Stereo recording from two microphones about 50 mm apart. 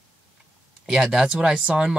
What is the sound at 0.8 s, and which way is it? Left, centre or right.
Speech, centre.